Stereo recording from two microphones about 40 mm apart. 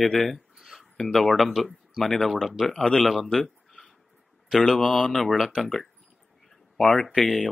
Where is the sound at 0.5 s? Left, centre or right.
Centre.